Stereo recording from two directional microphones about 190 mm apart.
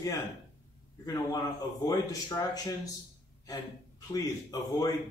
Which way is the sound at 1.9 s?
20° left (ahead or behind).